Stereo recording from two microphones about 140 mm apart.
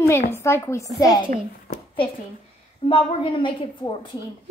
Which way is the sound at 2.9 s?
40° left (ahead or behind).